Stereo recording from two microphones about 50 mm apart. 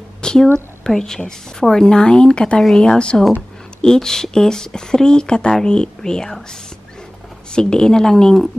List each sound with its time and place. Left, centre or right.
0.2 s a sound: centre
0.8 s speech: centre
7.5 s speech: centre